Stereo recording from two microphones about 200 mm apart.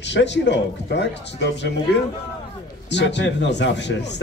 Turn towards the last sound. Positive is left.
turn(degrees=60)  # may be behind; listen again after turning